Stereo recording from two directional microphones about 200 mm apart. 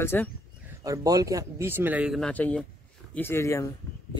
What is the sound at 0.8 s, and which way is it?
Speech, 15° right (ahead or behind).